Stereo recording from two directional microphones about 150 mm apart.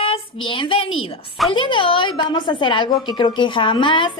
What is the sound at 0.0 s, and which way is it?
A woman's voice, 35° left (ahead or behind).